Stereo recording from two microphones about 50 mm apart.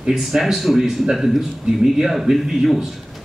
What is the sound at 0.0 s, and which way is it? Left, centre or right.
Speech, centre.